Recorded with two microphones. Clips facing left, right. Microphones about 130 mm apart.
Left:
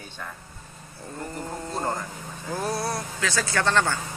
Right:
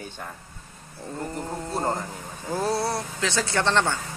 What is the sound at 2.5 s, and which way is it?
Speech, 25° right (ahead or behind).